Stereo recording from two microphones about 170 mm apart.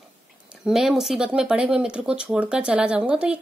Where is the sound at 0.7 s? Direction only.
Centre (ahead or behind).